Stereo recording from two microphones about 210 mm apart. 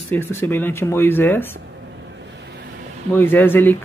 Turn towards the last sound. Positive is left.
turn(degrees=10)  # may be behind; listen again after turning